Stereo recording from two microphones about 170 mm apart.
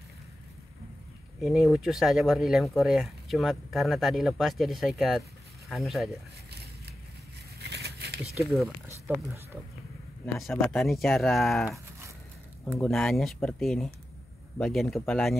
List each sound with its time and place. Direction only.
1.4 s speech: centre (ahead or behind)
7.6 s a sound: 75° right (ahead or behind)
8.4 s speech: 10° right (ahead or behind)
10.5 s speech: 5° left (ahead or behind)
12.8 s speech: 5° left (ahead or behind)